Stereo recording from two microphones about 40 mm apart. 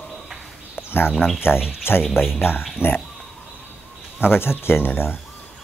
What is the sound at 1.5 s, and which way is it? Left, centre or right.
Speech, left.